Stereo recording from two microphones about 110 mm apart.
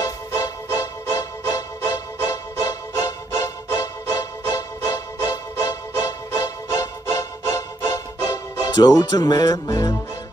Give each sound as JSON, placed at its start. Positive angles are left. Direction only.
{"t": 0.0, "sound": "music", "side_deg": 25}
{"t": 8.7, "sound": "music", "side_deg": 35}